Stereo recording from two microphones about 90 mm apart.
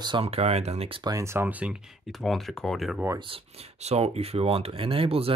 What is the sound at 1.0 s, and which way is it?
Speech, 45° right (ahead or behind).